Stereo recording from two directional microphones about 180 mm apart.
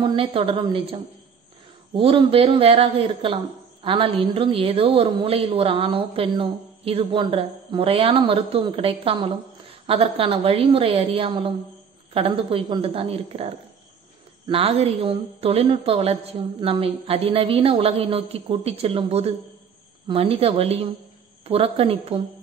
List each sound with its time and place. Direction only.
0.0 s a woman's voice: 30° right (ahead or behind)